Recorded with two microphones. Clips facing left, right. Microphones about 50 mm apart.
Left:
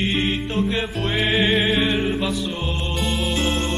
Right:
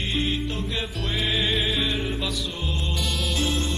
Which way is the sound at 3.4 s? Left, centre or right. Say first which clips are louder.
Left 1 dB; left.